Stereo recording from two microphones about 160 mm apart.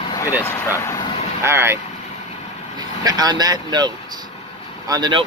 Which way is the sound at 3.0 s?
25° right (ahead or behind).